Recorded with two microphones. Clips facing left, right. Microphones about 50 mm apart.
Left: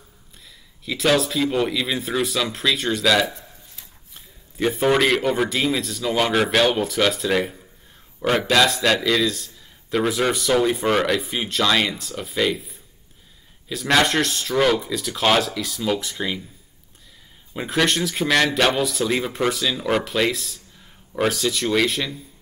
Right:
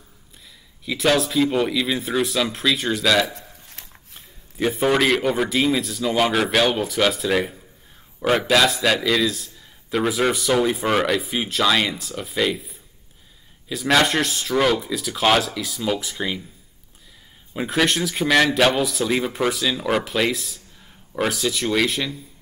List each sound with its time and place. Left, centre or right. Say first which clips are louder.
0.8 s a man's voice: even; centre
3.8 s a sound: right 4 dB; right
4.6 s a man's voice: left 1 dB; centre
17.6 s a man's voice: even; centre